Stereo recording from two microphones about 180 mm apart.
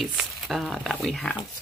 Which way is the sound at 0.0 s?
Centre (ahead or behind).